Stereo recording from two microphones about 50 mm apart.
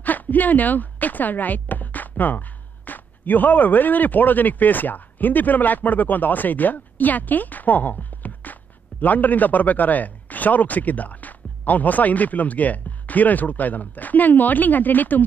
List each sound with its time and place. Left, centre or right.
0.0 s speech: left
8.2 s music: left
9.0 s speech: left